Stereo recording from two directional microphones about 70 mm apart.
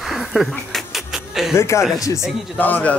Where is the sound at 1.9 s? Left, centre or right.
Left.